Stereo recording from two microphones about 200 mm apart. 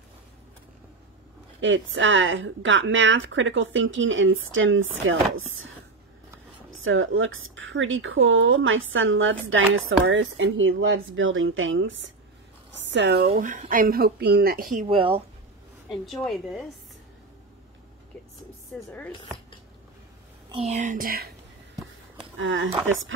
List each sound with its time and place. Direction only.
1.6 s a woman's voice: 70° right (ahead or behind)
6.8 s a woman's voice: 75° right (ahead or behind)
10.0 s a woman's voice: 70° right (ahead or behind); by 14.9 s 45° right (ahead or behind)
14.9 s speech: 25° right (ahead or behind)
15.9 s a woman's voice: centre (ahead or behind)
18.9 s speech: 5° left (ahead or behind)
20.4 s speech: 30° right (ahead or behind); by 21.3 s 45° right (ahead or behind)
22.4 s a woman's voice: 75° right (ahead or behind)